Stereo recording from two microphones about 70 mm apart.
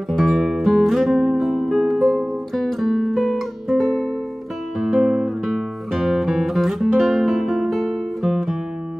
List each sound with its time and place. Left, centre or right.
0.1 s music: centre
4.7 s guitar: centre
5.5 s music: centre